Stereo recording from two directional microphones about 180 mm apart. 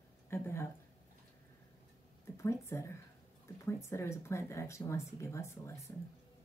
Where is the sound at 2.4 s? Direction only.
15° left (ahead or behind).